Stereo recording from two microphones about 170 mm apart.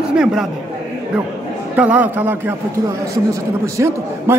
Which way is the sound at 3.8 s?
15° right (ahead or behind).